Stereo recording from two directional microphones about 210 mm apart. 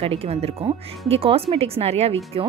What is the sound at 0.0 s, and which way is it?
A woman's voice, 30° right (ahead or behind).